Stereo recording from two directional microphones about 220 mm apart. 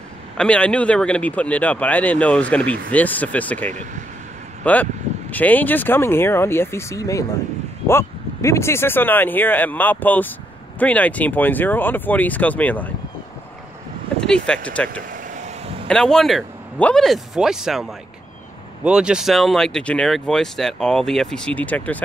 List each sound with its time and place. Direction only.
0.4 s speech: 5° left (ahead or behind)
14.2 s speech: 5° left (ahead or behind)
15.3 s vehicle: 30° right (ahead or behind)
15.9 s speech: 5° left (ahead or behind)